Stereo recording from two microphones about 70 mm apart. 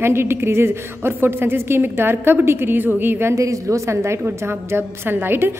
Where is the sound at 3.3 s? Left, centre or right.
Right.